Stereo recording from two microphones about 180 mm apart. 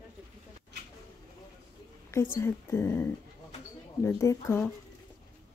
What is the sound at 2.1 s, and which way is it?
A woman's voice, 15° left (ahead or behind).